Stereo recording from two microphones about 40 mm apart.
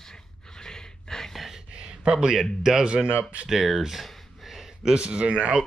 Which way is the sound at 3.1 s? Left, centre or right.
Right.